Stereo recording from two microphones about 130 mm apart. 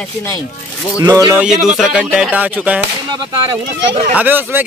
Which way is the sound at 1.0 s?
35° right (ahead or behind).